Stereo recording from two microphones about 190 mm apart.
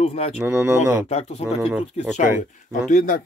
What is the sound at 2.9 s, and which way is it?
Speech, 45° left (ahead or behind).